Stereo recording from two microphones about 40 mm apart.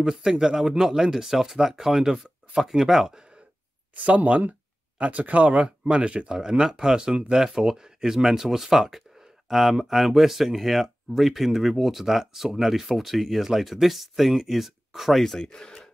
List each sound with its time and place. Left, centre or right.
0.1 s speech: centre
0.6 s speech: centre
3.9 s speech: right
6.6 s speech: centre
15.4 s speech: centre